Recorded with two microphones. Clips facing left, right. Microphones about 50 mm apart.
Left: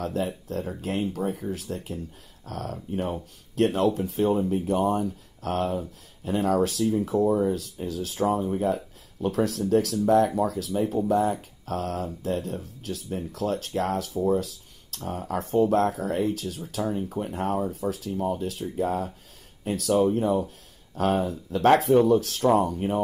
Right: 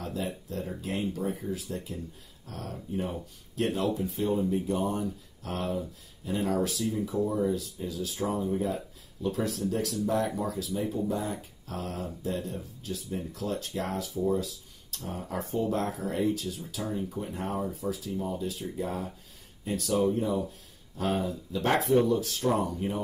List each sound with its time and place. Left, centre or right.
0.0 s speech: left